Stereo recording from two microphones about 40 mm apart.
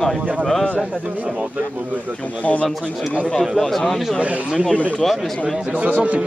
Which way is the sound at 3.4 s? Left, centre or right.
Centre.